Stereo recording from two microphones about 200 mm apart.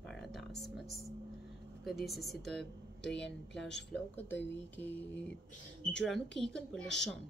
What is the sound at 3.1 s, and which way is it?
Speech, 60° left (ahead or behind).